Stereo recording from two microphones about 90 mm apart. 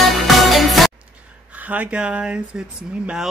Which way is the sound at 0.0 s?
Centre (ahead or behind).